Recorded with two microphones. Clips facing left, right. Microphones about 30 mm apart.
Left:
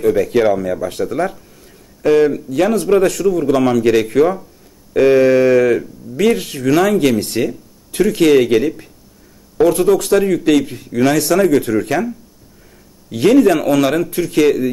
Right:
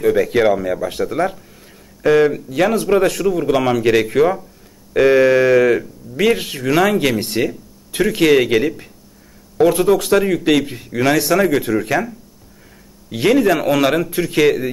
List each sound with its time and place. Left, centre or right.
0.0 s a man's voice: centre
13.1 s a man's voice: centre